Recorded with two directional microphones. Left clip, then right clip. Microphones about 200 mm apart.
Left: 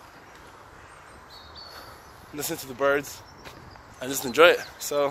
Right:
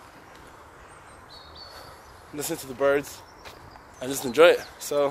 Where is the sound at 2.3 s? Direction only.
5° left (ahead or behind).